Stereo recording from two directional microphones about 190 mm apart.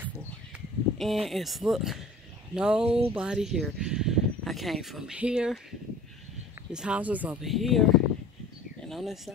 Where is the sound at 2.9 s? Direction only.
30° right (ahead or behind).